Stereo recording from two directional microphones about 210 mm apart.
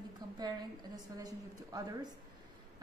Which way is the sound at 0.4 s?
20° right (ahead or behind).